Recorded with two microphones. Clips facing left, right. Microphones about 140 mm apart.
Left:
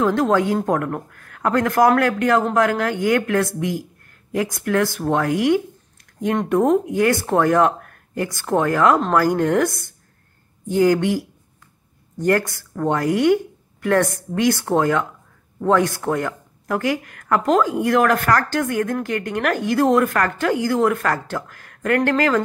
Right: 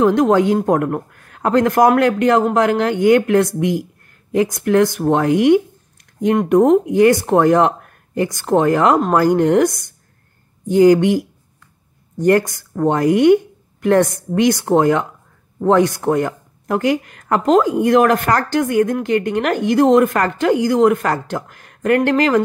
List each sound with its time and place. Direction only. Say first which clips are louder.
0.0 s speech: right 5 dB; 15° right (ahead or behind)